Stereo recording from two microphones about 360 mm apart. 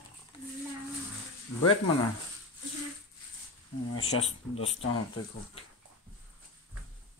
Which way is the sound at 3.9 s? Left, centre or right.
Left.